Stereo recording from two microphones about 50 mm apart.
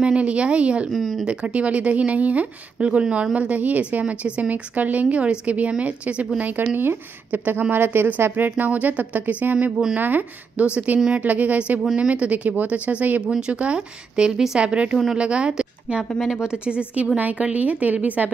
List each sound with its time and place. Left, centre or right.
0.0 s a woman's voice: right
0.9 s speech: centre
1.2 s a woman's voice: right
6.5 s a woman's voice: right
7.7 s speech: right
8.6 s a woman's voice: right
10.7 s a woman's voice: right
11.8 s speech: centre
12.1 s a woman's voice: right
13.2 s a woman's voice: right